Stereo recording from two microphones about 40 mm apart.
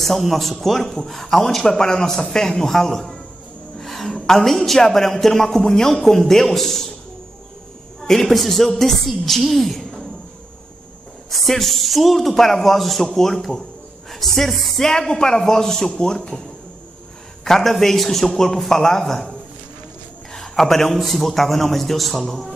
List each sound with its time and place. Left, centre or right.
0.0 s a man's voice: centre
3.8 s gasp: centre
4.1 s a man's voice: centre
8.0 s a woman's voice: centre
11.2 s a woman's voice: centre
17.5 s a man's voice: centre
20.3 s a woman's voice: centre